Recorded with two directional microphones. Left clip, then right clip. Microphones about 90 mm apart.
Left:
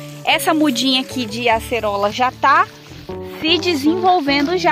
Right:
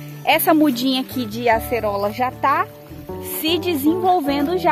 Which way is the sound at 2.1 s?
45° left (ahead or behind).